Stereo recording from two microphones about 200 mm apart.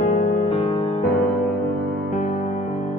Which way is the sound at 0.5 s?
30° left (ahead or behind).